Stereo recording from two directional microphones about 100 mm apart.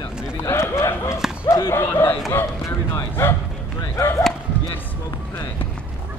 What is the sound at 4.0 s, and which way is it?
Speech, 35° left (ahead or behind).